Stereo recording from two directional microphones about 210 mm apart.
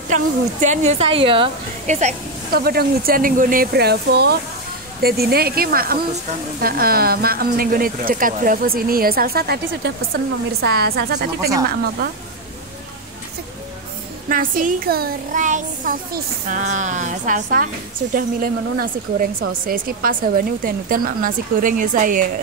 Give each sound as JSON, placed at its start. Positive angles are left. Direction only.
{"t": 0.1, "sound": "a woman's voice", "side_deg": -35}
{"t": 14.3, "sound": "a woman's voice", "side_deg": -40}